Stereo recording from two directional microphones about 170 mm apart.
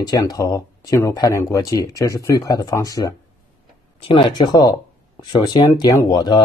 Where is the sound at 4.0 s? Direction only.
30° left (ahead or behind).